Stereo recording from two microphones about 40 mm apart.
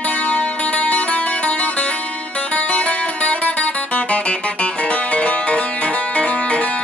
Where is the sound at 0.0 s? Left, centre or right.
Left.